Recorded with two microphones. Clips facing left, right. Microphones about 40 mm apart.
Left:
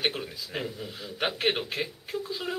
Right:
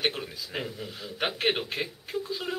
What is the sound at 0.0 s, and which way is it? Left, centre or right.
A man's voice, centre.